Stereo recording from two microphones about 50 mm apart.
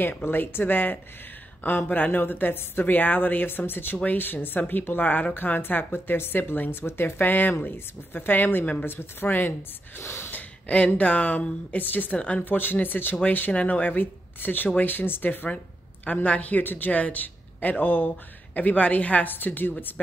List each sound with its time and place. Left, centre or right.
0.2 s a woman's voice: left
9.9 s gasp: left
10.3 s a sound: left
11.0 s a woman's voice: left
12.2 s speech: left
12.4 s a woman's voice: left